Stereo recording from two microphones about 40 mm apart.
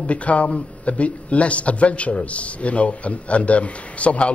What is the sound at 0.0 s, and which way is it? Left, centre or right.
Speech, left.